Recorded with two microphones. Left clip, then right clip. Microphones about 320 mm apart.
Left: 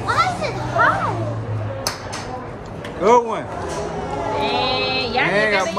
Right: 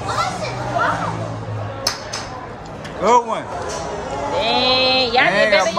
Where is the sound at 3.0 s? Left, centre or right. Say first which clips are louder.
Even; centre.